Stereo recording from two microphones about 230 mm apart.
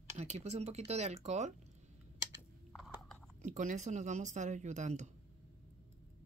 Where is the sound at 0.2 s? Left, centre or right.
Right.